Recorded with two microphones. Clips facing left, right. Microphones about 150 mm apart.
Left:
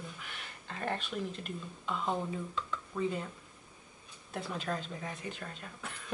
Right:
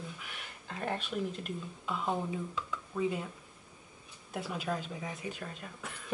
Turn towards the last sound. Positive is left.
turn(degrees=-5)  # may be behind; listen again after turning